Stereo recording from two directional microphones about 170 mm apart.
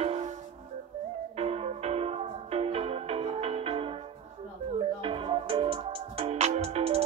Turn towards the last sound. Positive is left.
turn(degrees=-35)  # may be behind; listen again after turning